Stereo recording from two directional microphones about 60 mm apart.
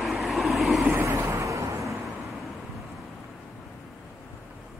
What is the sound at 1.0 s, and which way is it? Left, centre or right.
Vehicle, right.